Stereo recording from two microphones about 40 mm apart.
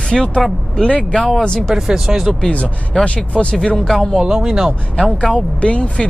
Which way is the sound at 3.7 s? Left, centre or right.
Centre.